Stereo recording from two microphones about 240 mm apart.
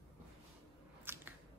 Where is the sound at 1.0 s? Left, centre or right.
Centre.